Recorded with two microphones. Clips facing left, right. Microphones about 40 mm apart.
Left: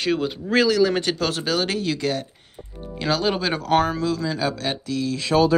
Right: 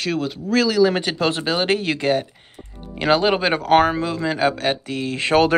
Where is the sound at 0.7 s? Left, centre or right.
Centre.